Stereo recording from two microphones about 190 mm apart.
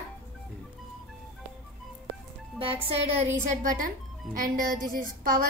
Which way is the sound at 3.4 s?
45° right (ahead or behind).